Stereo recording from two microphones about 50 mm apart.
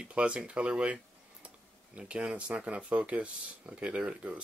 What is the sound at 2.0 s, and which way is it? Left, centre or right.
Speech, right.